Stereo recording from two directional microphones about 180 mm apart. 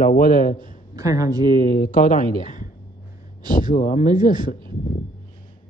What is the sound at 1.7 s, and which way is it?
A man's voice, 50° left (ahead or behind).